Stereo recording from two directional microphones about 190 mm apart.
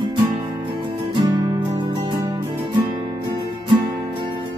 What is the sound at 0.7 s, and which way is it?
Music, 25° right (ahead or behind).